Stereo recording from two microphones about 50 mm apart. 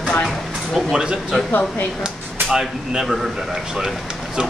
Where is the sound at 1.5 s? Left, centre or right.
Left.